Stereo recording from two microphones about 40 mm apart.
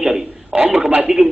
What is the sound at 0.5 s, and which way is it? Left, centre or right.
Speech, right.